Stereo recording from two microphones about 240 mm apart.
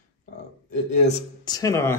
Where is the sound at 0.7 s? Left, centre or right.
Left.